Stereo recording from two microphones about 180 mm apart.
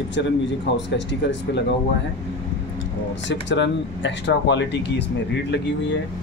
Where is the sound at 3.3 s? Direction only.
80° left.